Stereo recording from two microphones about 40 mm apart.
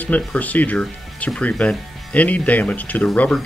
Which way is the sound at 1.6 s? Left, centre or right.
Left.